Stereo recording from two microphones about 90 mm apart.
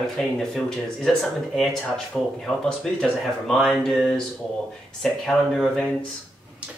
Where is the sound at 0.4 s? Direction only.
5° left (ahead or behind).